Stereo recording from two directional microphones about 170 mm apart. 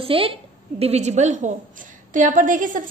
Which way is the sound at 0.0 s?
35° right (ahead or behind).